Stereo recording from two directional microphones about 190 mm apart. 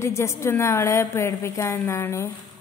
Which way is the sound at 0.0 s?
15° left (ahead or behind).